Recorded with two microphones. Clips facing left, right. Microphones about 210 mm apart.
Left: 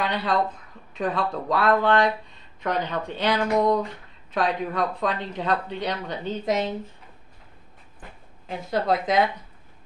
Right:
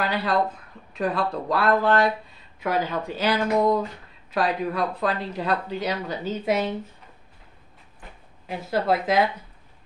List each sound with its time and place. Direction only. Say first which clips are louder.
0.0 s speech: right 1 dB; 5° right (ahead or behind)
8.5 s speech: right 1 dB; 5° right (ahead or behind)